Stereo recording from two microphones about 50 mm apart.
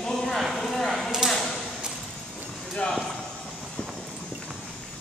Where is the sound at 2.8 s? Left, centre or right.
Centre.